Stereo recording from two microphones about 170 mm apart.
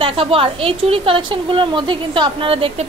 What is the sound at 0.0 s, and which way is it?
A woman's voice, 35° right (ahead or behind).